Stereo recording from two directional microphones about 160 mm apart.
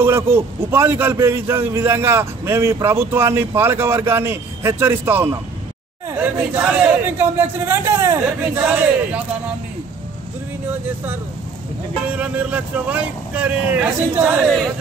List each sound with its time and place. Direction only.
0.0 s a man's voice: 15° right (ahead or behind)
12.2 s a man's voice: 10° right (ahead or behind)